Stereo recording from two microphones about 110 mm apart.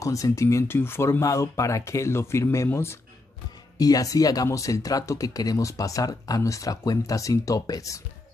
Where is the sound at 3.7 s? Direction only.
35° left (ahead or behind).